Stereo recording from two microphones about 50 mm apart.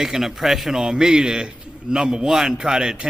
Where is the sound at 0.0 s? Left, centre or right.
Centre.